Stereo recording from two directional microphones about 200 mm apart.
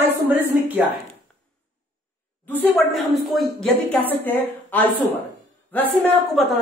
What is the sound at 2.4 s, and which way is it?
A woman's voice, 10° left (ahead or behind).